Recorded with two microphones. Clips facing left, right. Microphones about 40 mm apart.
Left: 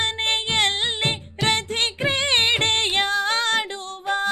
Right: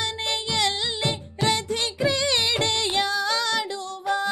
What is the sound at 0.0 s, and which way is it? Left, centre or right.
Music, left.